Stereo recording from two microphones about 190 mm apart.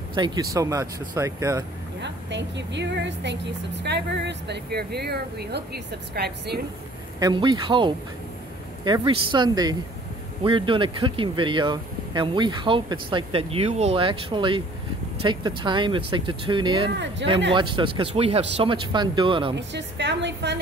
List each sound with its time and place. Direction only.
0.1 s speech: 25° right (ahead or behind)
2.0 s a woman's voice: 65° right (ahead or behind)
7.2 s speech: 20° right (ahead or behind)
16.9 s a woman's voice: 70° right (ahead or behind)
17.6 s speech: 25° right (ahead or behind)
19.5 s a woman's voice: 65° right (ahead or behind)